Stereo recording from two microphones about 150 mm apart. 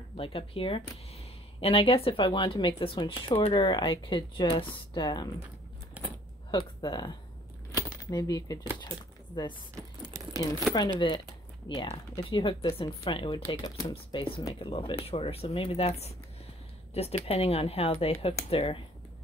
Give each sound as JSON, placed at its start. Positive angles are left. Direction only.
{"t": 0.2, "sound": "speech", "side_deg": 40}
{"t": 6.0, "sound": "keys jangling", "side_deg": -10}
{"t": 6.5, "sound": "speech", "side_deg": 30}
{"t": 7.7, "sound": "a sound", "side_deg": 25}
{"t": 8.7, "sound": "speech", "side_deg": 30}
{"t": 11.7, "sound": "speech", "side_deg": 35}
{"t": 13.8, "sound": "speech", "side_deg": 35}